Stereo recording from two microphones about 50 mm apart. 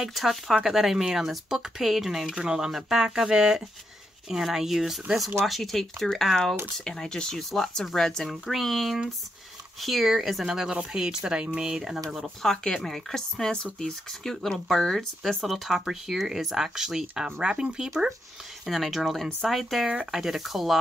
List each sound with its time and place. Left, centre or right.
0.0 s speech: centre
12.4 s speech: centre